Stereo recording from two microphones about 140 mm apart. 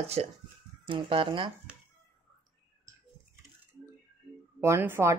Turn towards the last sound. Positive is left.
turn(degrees=-20)  # may be behind; listen again after turning